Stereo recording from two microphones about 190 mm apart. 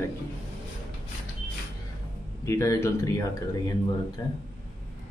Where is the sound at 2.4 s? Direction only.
15° left (ahead or behind).